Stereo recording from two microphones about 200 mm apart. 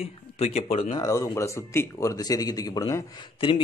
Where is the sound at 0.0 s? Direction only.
30° left (ahead or behind).